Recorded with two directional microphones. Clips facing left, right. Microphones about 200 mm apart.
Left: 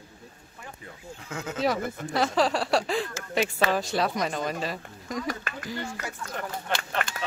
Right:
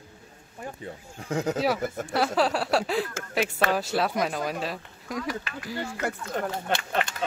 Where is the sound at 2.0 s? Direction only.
5° right (ahead or behind).